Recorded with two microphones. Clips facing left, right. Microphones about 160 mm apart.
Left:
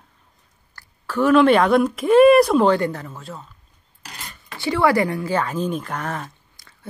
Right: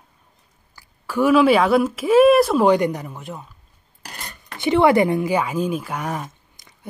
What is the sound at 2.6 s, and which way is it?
Speech, 15° right (ahead or behind).